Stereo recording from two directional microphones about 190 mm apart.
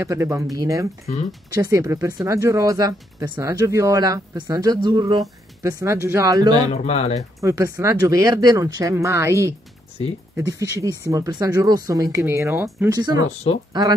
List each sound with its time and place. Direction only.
0.0 s speech: 15° right (ahead or behind)
6.7 s speech: 35° left (ahead or behind)
7.3 s speech: 15° right (ahead or behind)